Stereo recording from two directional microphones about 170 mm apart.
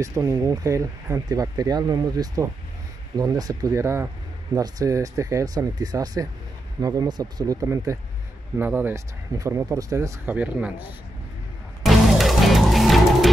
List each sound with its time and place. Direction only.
0.0 s speech: 15° right (ahead or behind)
11.8 s music: centre (ahead or behind)